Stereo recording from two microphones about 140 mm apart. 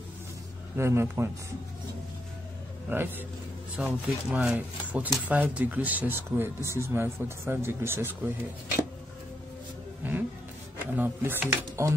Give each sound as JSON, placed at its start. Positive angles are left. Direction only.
{"t": 0.7, "sound": "speech", "side_deg": -20}
{"t": 2.9, "sound": "speech", "side_deg": -15}
{"t": 10.0, "sound": "speech", "side_deg": -15}